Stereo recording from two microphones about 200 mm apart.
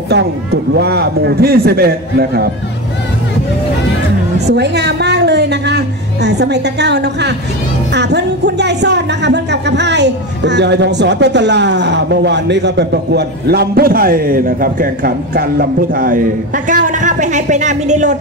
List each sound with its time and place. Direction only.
0.1 s speech: 60° right (ahead or behind)
4.5 s speech: 55° right (ahead or behind); by 18.1 s 35° right (ahead or behind)